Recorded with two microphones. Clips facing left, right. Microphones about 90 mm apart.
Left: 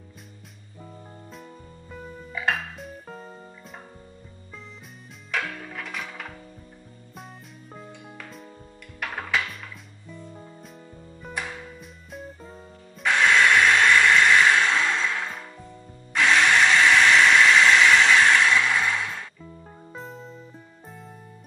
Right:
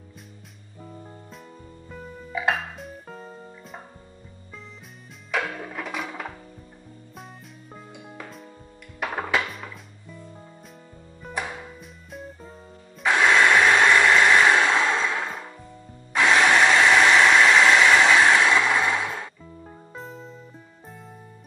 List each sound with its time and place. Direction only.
1.9 s music: centre (ahead or behind)
5.4 s music: 20° right (ahead or behind)
5.7 s music: 5° right (ahead or behind)
11.8 s music: centre (ahead or behind)
16.1 s tools: 5° right (ahead or behind)
19.9 s music: centre (ahead or behind)